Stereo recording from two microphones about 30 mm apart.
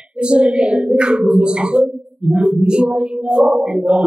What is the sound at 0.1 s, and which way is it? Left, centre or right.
A man's voice, right.